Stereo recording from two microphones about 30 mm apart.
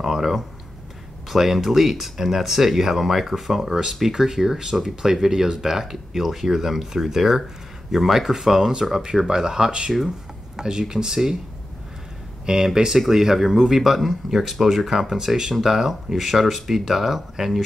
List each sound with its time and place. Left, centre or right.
0.0 s a sound: centre
1.3 s speech: centre
5.6 s speech: centre; by 9.9 s right
10.0 s speech: right
12.4 s speech: right